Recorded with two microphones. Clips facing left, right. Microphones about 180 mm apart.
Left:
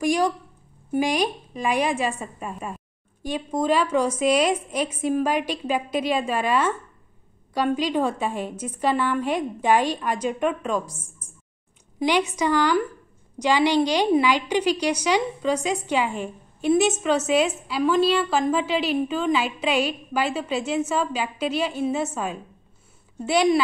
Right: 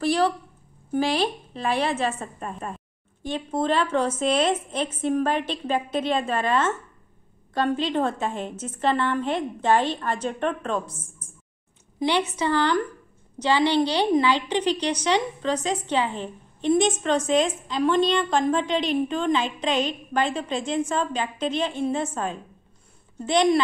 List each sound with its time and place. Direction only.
0.0 s a woman's voice: 10° left (ahead or behind)
12.0 s a woman's voice: 10° left (ahead or behind)